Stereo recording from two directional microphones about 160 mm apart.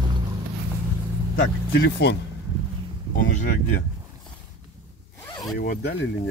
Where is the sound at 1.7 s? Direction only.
90° left.